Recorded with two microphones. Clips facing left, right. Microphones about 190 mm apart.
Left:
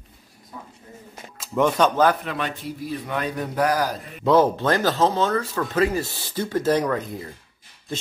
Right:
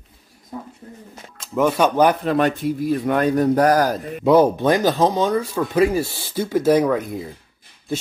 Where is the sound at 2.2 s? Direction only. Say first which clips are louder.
Right 10 dB; 45° right (ahead or behind).